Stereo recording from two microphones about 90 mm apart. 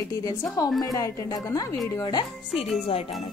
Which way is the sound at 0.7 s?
40° left (ahead or behind).